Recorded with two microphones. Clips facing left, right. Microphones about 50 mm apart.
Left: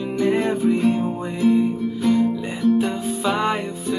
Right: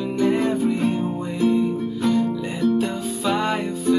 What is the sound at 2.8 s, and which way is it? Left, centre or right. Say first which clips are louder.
Music: left 2 dB; left.